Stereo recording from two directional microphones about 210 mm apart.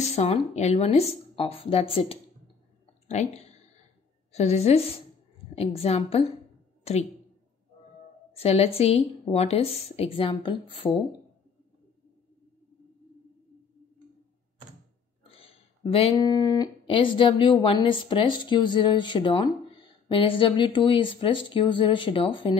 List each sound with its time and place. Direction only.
0.1 s speech: 30° left (ahead or behind)
4.3 s speech: 30° left (ahead or behind)
6.8 s a sound: 30° left (ahead or behind)
8.3 s speech: 30° left (ahead or behind)
15.2 s speech: 25° left (ahead or behind)